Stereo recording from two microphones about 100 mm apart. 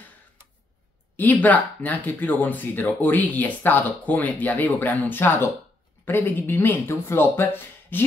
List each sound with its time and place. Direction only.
1.1 s speech: 15° left (ahead or behind)